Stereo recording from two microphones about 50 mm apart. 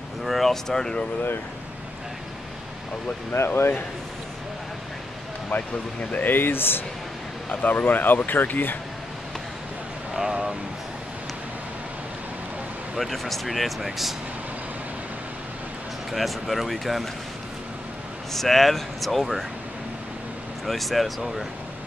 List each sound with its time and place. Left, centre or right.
0.2 s speech: centre
3.4 s speech: left
5.5 s speech: left
12.9 s speech: centre
16.1 s speech: centre
18.3 s speech: centre
20.6 s speech: centre